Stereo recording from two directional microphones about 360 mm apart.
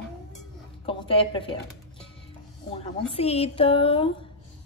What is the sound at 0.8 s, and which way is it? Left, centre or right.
Speech, centre.